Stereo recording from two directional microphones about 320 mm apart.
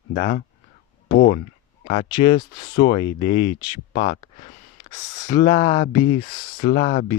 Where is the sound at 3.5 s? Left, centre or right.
Centre.